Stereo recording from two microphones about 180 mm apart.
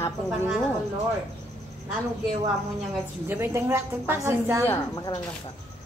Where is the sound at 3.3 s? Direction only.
15° right (ahead or behind).